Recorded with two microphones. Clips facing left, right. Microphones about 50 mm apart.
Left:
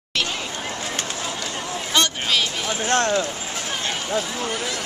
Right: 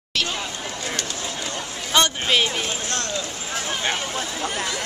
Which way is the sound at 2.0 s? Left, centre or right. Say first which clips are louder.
Right 2 dB; right.